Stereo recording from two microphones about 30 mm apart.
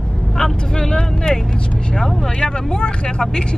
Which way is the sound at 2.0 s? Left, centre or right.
Centre.